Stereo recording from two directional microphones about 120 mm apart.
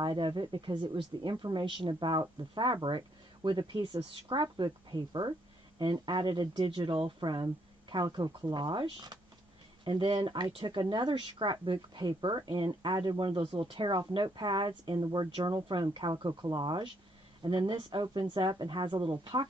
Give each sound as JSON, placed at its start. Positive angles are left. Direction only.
{"t": 0.0, "sound": "speech", "side_deg": -40}